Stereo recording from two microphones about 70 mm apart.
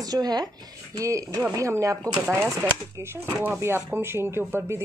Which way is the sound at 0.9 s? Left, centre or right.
Right.